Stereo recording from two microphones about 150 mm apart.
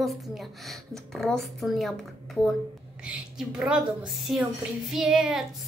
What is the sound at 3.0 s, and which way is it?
Speech, 5° right (ahead or behind).